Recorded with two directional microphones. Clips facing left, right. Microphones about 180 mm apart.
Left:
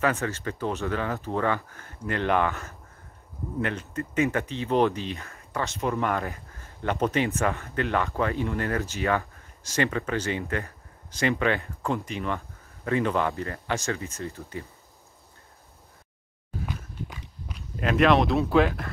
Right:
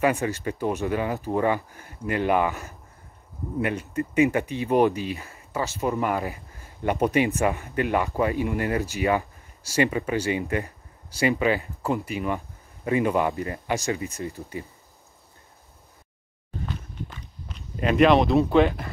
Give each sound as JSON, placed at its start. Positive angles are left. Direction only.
{"t": 0.0, "sound": "speech", "side_deg": -15}
{"t": 16.5, "sound": "walk", "side_deg": 10}
{"t": 17.7, "sound": "speech", "side_deg": 0}